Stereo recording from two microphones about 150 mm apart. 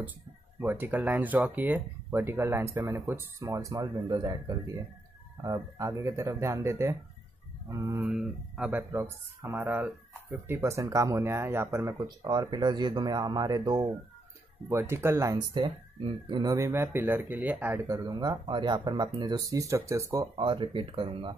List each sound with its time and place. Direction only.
0.6 s speech: 15° right (ahead or behind)
8.0 s speech: 5° right (ahead or behind)
8.9 s speech: 20° right (ahead or behind)
16.5 s speech: 20° right (ahead or behind)
17.8 s speech: 25° right (ahead or behind)
20.3 s speech: 35° right (ahead or behind)